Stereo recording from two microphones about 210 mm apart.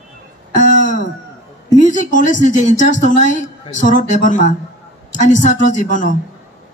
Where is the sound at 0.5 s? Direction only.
35° left (ahead or behind).